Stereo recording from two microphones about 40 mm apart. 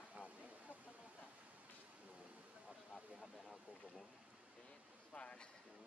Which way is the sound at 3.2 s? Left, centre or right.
Centre.